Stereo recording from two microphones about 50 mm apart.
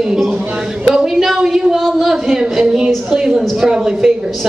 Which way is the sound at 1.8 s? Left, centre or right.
Centre.